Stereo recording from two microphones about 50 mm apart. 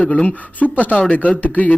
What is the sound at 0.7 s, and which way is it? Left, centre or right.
A man's voice, left.